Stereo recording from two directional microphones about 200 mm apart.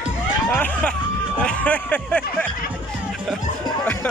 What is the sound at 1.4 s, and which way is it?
Music, 5° left (ahead or behind).